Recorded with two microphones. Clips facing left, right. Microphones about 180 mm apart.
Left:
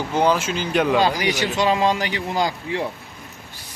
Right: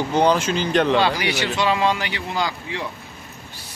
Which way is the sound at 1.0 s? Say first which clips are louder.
Left 1 dB; 40° left (ahead or behind).